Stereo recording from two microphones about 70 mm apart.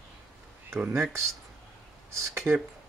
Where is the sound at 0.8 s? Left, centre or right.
Right.